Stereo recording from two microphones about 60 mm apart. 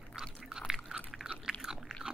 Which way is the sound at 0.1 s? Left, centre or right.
Centre.